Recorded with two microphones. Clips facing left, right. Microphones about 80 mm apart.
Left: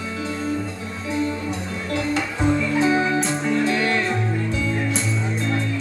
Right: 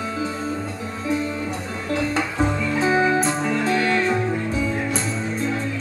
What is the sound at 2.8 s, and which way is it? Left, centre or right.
Music, right.